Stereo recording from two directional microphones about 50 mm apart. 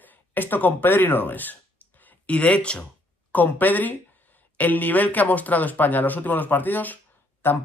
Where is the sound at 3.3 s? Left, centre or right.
Left.